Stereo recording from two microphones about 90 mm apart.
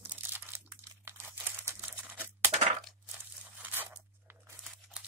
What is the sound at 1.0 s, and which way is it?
Tearing, 25° right (ahead or behind).